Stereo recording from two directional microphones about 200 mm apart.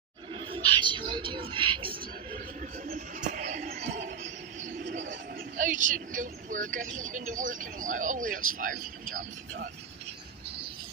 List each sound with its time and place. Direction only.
0.3 s music: 25° right (ahead or behind)
1.1 s a man's voice: 25° right (ahead or behind)
2.9 s a sound: 40° right (ahead or behind)
5.6 s speech: 40° right (ahead or behind)